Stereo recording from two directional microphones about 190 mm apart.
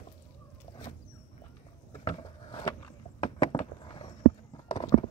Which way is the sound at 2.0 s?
25° left (ahead or behind).